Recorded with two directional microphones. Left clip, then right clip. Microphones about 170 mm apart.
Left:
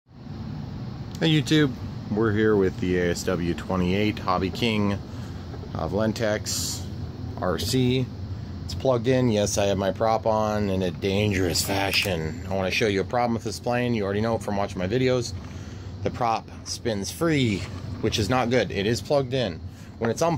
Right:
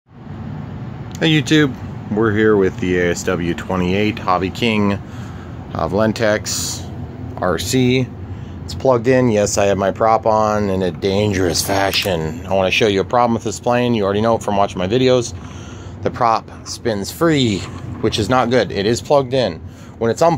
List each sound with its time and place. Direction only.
1.2 s speech: 5° right (ahead or behind)
8.8 s speech: 10° right (ahead or behind)